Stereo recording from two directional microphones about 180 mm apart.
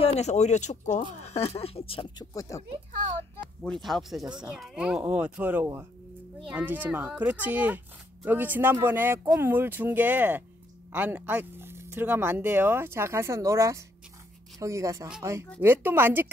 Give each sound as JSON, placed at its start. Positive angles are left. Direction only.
{"t": 0.0, "sound": "speech", "side_deg": 35}
{"t": 3.6, "sound": "speech", "side_deg": 0}